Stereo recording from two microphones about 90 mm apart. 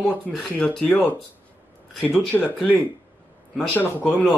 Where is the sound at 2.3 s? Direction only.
15° left (ahead or behind).